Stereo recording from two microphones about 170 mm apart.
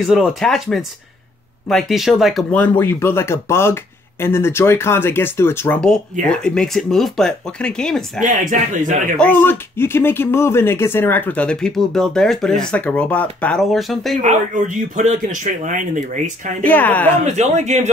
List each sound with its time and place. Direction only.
0.0 s speech: centre (ahead or behind)
8.2 s speech: 50° right (ahead or behind)
9.1 s speech: 10° left (ahead or behind)
14.2 s speech: 45° right (ahead or behind)
16.6 s speech: 10° left (ahead or behind)
17.2 s speech: 45° right (ahead or behind)